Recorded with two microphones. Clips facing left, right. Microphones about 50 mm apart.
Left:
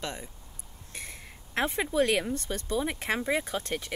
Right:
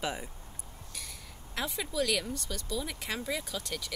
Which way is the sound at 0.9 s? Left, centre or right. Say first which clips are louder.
Left 5 dB; left.